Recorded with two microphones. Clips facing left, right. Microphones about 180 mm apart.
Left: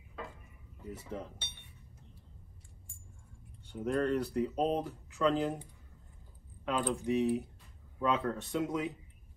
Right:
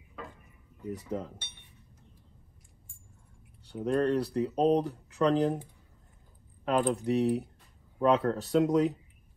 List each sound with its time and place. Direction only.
3.6 s speech: 35° right (ahead or behind)
6.6 s speech: 35° right (ahead or behind)